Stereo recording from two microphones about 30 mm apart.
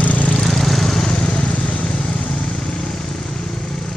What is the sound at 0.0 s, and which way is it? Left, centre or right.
Vehicle, left.